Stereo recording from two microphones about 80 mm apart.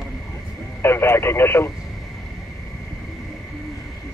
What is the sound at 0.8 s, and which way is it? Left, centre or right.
Speech, left.